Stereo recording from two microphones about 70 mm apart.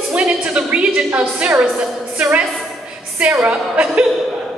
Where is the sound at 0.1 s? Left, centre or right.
Centre.